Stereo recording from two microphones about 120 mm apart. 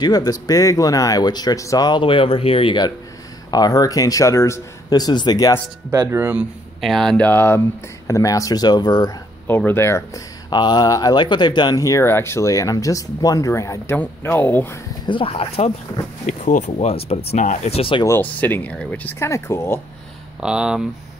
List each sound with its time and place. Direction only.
0.0 s speech: 35° left (ahead or behind)
5.9 s speech: 20° right (ahead or behind)
6.8 s speech: centre (ahead or behind)
7.2 s speech: 20° left (ahead or behind); by 9.1 s 35° left (ahead or behind)
9.7 s speech: 20° left (ahead or behind)
15.0 s speech: 50° left (ahead or behind)
16.3 s speech: 90° left; by 17.4 s 55° left (ahead or behind)
17.4 s speech: 90° left
17.7 s speech: 50° left (ahead or behind)
18.0 s speech: 15° left (ahead or behind)
19.1 s speech: 20° left (ahead or behind)
20.3 s speech: 5° right (ahead or behind)